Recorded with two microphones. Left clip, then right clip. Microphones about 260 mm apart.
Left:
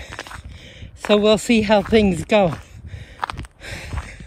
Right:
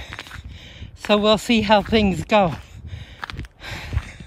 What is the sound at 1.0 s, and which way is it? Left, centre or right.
Speech, centre.